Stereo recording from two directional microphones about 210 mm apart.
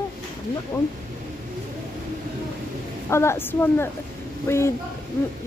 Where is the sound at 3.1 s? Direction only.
10° left (ahead or behind).